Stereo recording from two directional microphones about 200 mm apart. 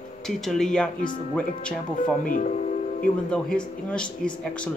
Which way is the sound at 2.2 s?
40° left (ahead or behind).